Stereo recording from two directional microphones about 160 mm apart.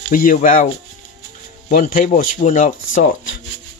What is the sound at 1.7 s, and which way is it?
Speech, 60° left (ahead or behind).